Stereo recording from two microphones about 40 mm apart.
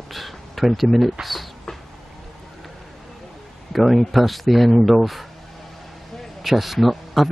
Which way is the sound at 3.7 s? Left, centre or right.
Centre.